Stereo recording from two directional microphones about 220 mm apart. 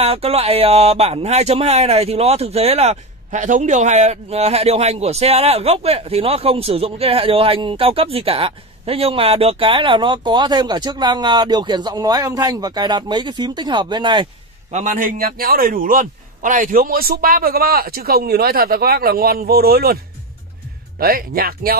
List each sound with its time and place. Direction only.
0.0 s speech: 25° right (ahead or behind)
14.7 s a man's voice: 35° right (ahead or behind)
21.0 s a man's voice: 40° right (ahead or behind)